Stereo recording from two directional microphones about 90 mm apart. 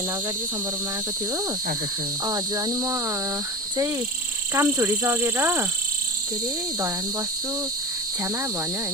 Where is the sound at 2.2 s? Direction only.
50° right (ahead or behind).